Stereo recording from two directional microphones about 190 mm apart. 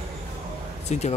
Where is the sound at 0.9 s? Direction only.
35° left (ahead or behind).